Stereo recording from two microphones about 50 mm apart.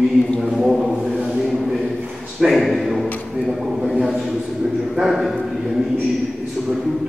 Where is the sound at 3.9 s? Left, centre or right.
Centre.